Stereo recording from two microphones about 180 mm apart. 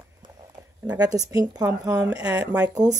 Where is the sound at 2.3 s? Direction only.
5° right (ahead or behind).